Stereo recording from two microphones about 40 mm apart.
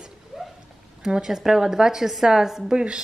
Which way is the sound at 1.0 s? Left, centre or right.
Centre.